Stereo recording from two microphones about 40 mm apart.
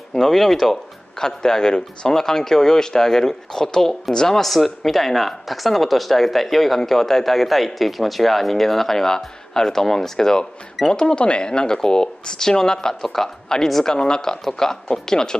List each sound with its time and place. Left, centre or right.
0.1 s speech: centre
4.5 s speech: centre
13.9 s speech: centre